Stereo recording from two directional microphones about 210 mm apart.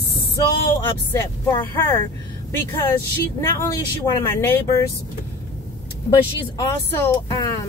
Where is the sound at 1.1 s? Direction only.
15° left (ahead or behind).